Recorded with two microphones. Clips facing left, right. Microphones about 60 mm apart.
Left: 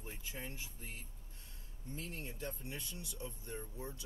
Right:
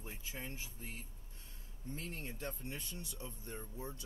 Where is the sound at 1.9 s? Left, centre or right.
Right.